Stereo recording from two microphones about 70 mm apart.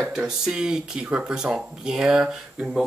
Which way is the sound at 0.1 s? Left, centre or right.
Centre.